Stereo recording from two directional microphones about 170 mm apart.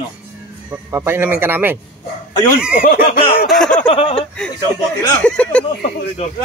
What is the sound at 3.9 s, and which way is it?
Speech, 30° left (ahead or behind).